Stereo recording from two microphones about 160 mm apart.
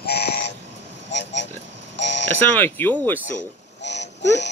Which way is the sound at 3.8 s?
90° left.